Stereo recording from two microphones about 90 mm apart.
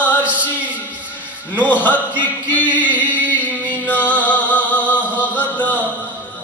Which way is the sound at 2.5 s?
20° left (ahead or behind).